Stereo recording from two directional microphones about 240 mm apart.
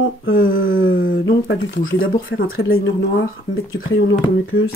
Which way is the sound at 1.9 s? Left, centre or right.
Left.